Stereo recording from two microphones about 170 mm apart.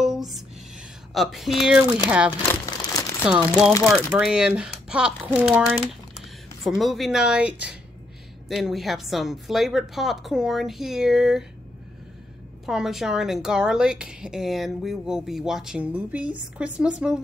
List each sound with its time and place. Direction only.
0.0 s a sound: centre (ahead or behind)
1.1 s a woman's voice: centre (ahead or behind)
2.4 s crumpling: 20° left (ahead or behind)
4.2 s a woman's voice: 5° right (ahead or behind)
12.6 s a woman's voice: centre (ahead or behind)